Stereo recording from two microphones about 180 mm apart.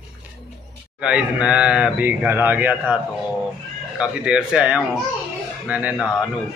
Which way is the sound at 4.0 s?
5° right (ahead or behind).